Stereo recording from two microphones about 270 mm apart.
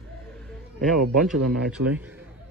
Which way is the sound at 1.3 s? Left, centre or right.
Centre.